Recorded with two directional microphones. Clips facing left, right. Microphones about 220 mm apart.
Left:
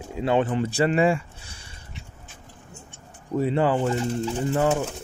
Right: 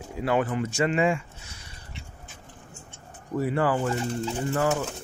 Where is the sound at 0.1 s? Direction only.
25° left (ahead or behind).